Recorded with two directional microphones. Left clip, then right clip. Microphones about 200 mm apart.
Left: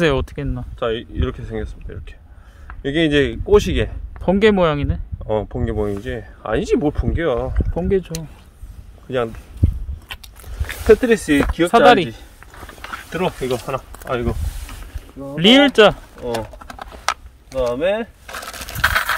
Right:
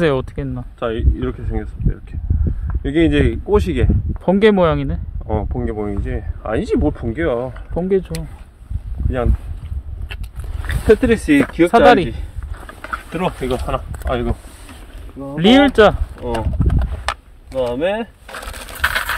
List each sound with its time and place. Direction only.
0.0 s speech: 5° left (ahead or behind)
0.7 s speech: 25° left (ahead or behind)
1.2 s speech: 35° left (ahead or behind)
2.7 s speech: 35° left (ahead or behind)
4.2 s speech: centre (ahead or behind)
5.2 s speech: 35° left (ahead or behind)
7.7 s speech: centre (ahead or behind)
10.9 s speech: 5° left (ahead or behind)
15.1 s bird: centre (ahead or behind)